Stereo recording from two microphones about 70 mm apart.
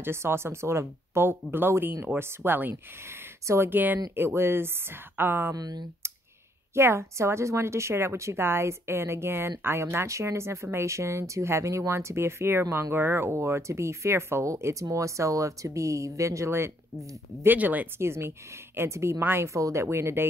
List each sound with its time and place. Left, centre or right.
0.0 s speech: right
3.7 s speech: right
5.5 s speech: right
6.7 s speech: right
17.5 s speech: right
17.9 s speech: right